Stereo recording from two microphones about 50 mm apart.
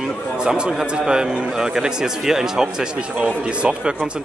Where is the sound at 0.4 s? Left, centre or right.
Centre.